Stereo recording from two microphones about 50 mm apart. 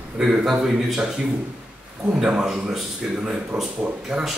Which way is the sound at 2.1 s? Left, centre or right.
Centre.